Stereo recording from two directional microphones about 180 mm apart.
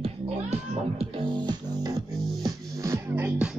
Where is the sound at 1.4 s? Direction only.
20° right (ahead or behind).